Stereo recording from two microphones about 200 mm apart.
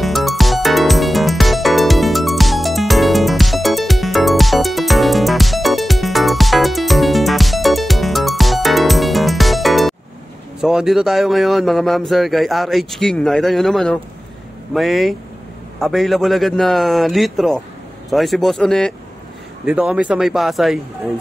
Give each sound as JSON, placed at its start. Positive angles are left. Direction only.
{"t": 0.0, "sound": "music", "side_deg": 0}
{"t": 10.6, "sound": "speech", "side_deg": 0}